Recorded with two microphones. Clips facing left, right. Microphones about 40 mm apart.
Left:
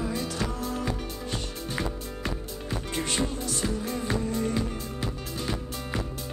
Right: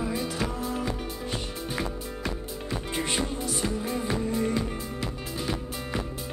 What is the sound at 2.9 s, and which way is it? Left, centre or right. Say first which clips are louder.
Music: even; centre.